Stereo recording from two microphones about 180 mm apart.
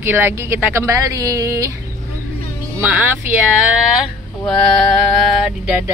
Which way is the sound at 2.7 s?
10° right (ahead or behind).